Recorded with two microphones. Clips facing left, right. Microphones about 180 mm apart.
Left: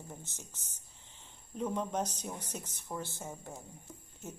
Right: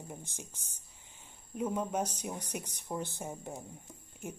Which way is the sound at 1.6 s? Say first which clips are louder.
Right 1 dB; 10° right (ahead or behind).